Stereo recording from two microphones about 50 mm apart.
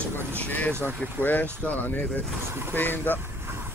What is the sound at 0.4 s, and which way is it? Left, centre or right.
Speech, left.